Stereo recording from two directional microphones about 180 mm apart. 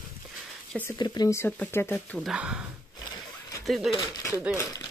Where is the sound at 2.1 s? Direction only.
5° right (ahead or behind).